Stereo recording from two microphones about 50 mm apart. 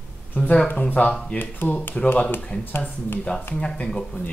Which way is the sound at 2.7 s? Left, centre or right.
Left.